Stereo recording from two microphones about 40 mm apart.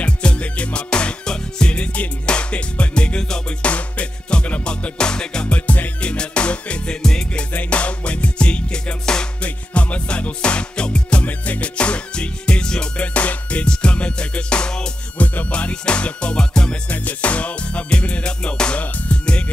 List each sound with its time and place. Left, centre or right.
0.0 s music: left
5.5 s music: left
7.0 s music: centre
7.5 s music: left
9.4 s music: left
11.2 s music: left
12.9 s music: left
15.1 s music: left
15.5 s music: left
16.9 s music: left